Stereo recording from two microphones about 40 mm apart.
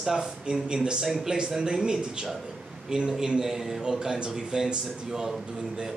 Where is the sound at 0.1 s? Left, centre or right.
Centre.